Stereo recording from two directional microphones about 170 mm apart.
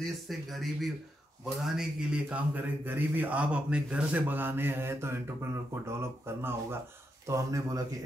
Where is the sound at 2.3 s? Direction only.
10° right (ahead or behind).